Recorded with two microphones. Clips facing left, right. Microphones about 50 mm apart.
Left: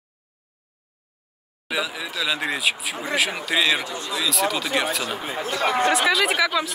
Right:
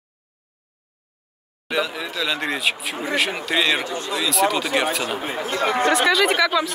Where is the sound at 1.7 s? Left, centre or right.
Centre.